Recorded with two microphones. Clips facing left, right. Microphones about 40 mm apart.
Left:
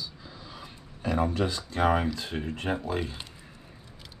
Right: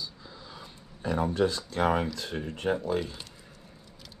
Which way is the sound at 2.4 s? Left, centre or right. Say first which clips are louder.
Right 3 dB; left.